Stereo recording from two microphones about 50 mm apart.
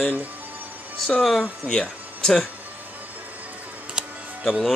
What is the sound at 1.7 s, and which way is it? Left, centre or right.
Speech, centre.